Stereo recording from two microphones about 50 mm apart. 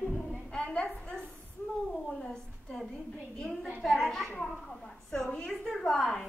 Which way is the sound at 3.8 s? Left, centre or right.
Centre.